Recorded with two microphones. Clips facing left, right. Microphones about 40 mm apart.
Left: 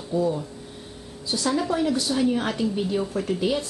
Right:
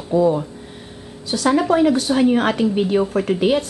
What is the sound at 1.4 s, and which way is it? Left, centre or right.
A woman's voice, right.